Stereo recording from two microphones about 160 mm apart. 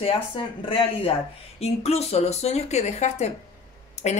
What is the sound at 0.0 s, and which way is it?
Speech, 35° left (ahead or behind).